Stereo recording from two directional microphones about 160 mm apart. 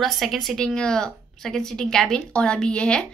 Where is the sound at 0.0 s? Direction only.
Centre (ahead or behind).